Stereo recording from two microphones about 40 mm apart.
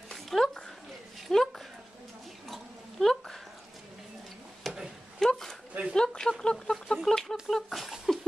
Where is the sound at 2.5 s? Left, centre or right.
Centre.